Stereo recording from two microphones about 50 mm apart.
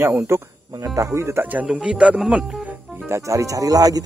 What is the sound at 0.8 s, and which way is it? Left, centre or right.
Speech, right.